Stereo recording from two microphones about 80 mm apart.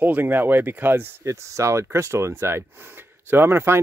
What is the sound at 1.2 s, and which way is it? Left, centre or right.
Speech, right.